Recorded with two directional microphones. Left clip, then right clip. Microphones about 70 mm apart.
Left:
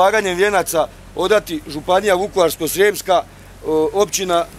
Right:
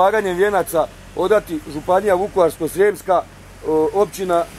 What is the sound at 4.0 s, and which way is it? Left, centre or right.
Speech, left.